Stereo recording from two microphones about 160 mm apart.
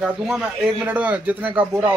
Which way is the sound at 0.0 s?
5° right (ahead or behind).